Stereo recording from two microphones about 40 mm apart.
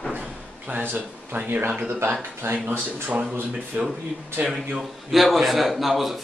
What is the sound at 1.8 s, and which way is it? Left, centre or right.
Speech, right.